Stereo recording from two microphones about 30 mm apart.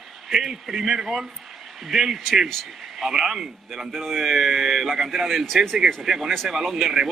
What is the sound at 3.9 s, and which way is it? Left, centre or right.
Speech, centre.